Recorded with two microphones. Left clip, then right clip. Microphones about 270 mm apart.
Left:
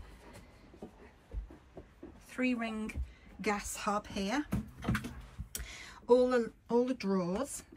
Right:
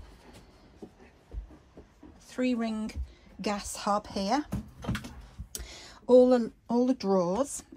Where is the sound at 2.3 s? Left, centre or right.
Centre.